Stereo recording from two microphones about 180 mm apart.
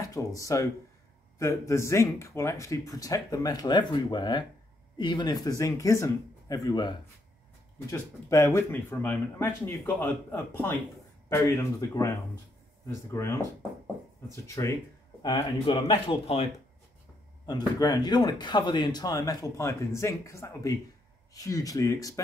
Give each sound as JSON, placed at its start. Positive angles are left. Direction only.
{"t": 0.0, "sound": "speech", "side_deg": 20}
{"t": 15.2, "sound": "speech", "side_deg": 30}
{"t": 17.5, "sound": "speech", "side_deg": 20}